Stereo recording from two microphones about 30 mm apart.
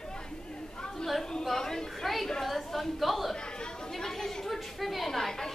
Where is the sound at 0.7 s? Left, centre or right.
Left.